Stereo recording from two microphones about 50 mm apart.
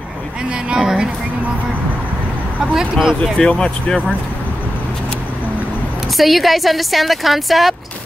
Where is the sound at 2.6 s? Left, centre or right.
Centre.